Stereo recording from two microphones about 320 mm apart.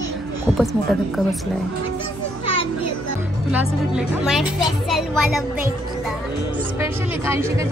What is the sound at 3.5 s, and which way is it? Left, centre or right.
Speech, centre.